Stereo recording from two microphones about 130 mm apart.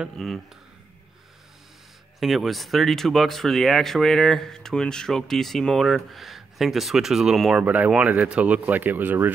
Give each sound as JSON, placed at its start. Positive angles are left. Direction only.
{"t": 0.0, "sound": "speech", "side_deg": 0}
{"t": 2.1, "sound": "speech", "side_deg": 0}